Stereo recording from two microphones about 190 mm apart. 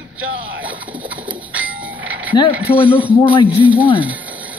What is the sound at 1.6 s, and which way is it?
Train, 10° right (ahead or behind).